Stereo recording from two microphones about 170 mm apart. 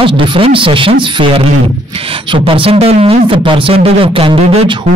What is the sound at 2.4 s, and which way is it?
Speech, 30° right (ahead or behind).